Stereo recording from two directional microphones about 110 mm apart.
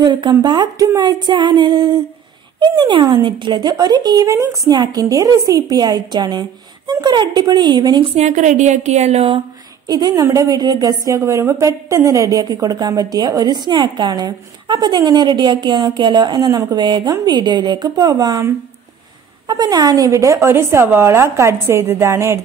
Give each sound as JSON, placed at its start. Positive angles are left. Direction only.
{"t": 0.0, "sound": "a woman's voice", "side_deg": -45}
{"t": 8.2, "sound": "a woman's voice", "side_deg": -90}
{"t": 9.8, "sound": "a woman's voice", "side_deg": -35}